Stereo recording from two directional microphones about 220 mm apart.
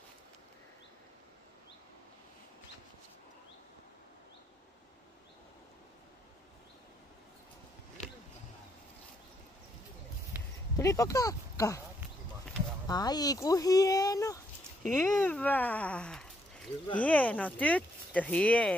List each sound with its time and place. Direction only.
10.8 s speech: 15° left (ahead or behind)
12.8 s speech: 15° left (ahead or behind)